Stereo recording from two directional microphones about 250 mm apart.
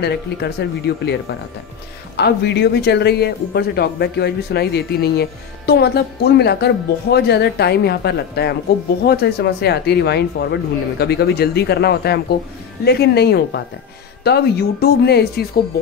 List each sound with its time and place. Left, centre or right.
0.0 s speech: left
2.1 s speech: left